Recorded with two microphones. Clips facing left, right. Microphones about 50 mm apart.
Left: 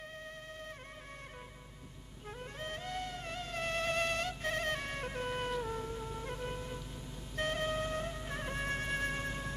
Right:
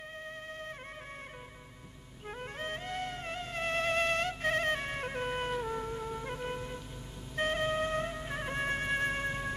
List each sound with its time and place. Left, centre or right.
2.2 s music: right
4.7 s music: right